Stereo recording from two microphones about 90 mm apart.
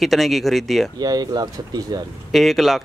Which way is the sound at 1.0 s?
45° right (ahead or behind).